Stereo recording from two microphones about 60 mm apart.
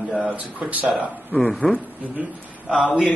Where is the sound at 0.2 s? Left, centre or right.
Right.